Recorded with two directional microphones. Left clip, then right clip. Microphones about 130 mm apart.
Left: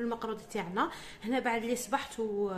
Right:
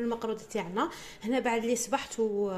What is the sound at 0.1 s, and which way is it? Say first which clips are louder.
A woman's voice: right 3 dB; 20° right (ahead or behind).